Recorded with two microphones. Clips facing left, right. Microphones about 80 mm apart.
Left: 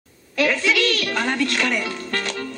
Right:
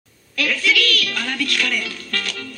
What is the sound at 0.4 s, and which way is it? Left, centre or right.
A woman's voice, left.